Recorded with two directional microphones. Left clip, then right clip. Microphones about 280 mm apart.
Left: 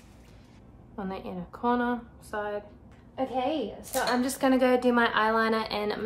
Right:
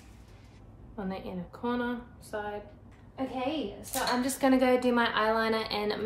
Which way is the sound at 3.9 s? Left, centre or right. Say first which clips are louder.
Left 3 dB; left.